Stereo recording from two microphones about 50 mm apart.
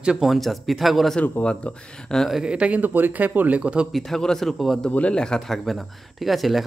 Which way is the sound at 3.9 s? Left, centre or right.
Centre.